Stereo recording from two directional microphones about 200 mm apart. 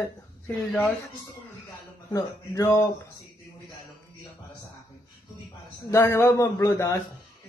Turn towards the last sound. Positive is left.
turn(degrees=15)  # may be behind; listen again after turning